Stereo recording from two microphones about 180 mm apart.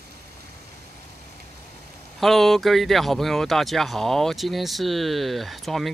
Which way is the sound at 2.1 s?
Centre (ahead or behind).